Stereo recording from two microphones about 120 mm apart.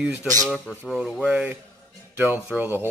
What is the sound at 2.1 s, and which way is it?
Speech, 15° right (ahead or behind).